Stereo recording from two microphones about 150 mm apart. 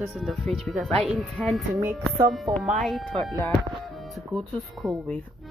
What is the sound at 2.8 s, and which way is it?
Speech, centre (ahead or behind).